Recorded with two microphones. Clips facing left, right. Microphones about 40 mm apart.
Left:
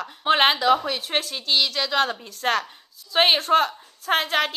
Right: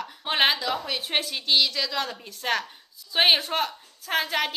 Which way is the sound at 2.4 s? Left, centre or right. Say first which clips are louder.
Left 4 dB; left.